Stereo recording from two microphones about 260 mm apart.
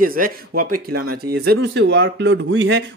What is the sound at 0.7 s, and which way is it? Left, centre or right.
Speech, right.